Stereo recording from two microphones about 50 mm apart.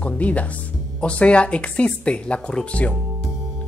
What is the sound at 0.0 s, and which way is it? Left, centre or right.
Speech, left.